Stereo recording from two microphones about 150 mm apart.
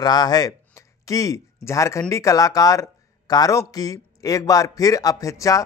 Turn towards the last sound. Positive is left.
turn(degrees=20)  # may be behind; listen again after turning